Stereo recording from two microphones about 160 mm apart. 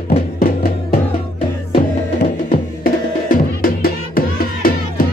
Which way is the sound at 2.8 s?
60° left (ahead or behind).